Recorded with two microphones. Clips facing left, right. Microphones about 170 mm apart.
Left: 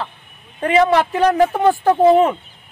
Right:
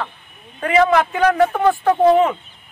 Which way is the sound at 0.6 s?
30° left (ahead or behind).